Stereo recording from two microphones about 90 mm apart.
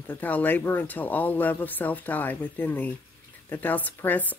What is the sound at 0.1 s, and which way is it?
Speech, 20° left (ahead or behind).